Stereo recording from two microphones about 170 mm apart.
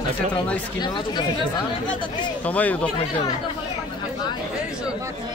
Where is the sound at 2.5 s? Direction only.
10° left (ahead or behind).